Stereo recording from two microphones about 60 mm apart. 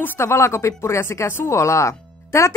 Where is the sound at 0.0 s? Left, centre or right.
Left.